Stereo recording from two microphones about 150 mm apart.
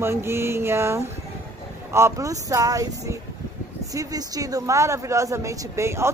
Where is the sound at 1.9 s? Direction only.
20° right (ahead or behind).